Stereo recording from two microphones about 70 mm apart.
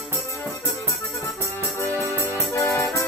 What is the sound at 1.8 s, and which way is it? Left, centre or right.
Music, left.